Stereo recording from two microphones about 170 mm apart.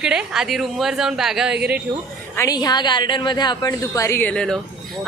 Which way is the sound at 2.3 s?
20° left (ahead or behind).